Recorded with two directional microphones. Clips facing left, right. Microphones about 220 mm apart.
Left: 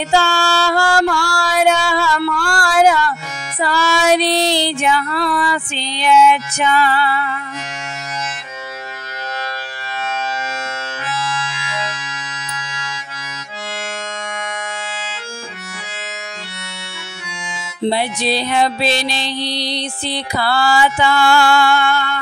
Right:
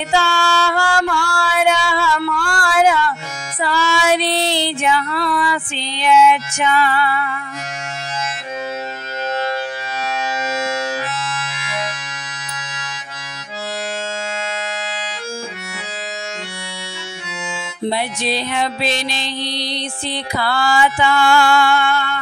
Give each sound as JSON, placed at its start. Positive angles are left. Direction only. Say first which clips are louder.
{"t": 0.1, "sound": "music", "louder": "left 1 dB", "side_deg": 40}
{"t": 3.6, "sound": "female singing", "louder": "left 2 dB", "side_deg": 40}
{"t": 17.8, "sound": "music", "louder": "left 3 dB", "side_deg": 35}